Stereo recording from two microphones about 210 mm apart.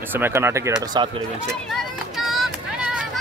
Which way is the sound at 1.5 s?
Centre (ahead or behind).